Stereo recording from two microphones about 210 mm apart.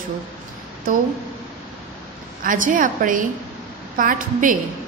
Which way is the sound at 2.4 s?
40° right (ahead or behind).